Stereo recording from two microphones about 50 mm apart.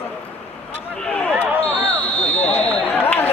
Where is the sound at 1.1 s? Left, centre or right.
Left.